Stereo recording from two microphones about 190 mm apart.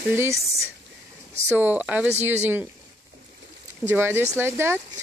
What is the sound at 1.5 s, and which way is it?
Speech, 10° right (ahead or behind).